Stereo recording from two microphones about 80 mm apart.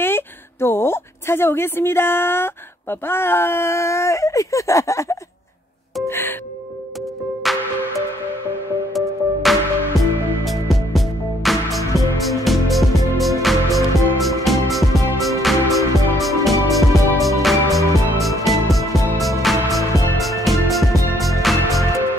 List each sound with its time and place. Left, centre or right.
0.0 s a woman's voice: left
6.0 s music: left
7.4 s music: centre
8.9 s music: centre